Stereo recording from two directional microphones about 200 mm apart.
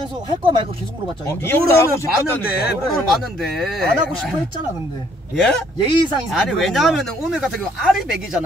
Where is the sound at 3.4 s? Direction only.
Centre (ahead or behind).